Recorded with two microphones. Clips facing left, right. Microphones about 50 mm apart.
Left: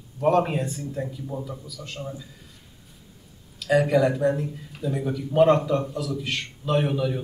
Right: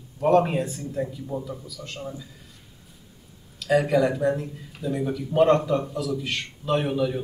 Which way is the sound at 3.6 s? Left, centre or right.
Centre.